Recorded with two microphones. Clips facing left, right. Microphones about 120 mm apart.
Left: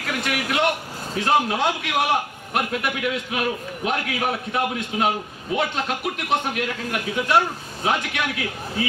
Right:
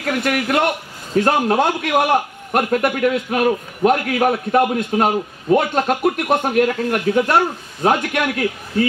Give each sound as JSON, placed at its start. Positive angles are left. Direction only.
{"t": 0.0, "sound": "a man's voice", "side_deg": -45}